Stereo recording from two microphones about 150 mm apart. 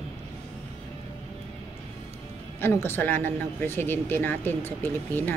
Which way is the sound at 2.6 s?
15° left (ahead or behind).